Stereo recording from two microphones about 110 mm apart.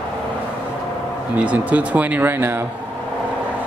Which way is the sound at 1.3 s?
10° right (ahead or behind).